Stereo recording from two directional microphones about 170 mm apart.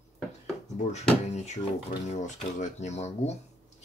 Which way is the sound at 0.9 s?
40° left (ahead or behind).